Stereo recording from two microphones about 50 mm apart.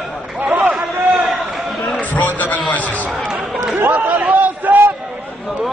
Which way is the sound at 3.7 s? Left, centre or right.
Right.